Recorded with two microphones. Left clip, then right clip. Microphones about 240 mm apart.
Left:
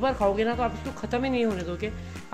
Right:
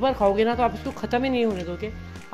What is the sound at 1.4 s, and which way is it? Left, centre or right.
Speech, centre.